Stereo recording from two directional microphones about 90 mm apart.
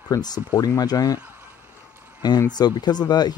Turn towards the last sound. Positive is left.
turn(degrees=50)  # may be behind; listen again after turning